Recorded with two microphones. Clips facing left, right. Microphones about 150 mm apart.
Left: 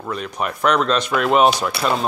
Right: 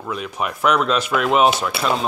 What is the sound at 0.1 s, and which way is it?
Speech, 5° right (ahead or behind).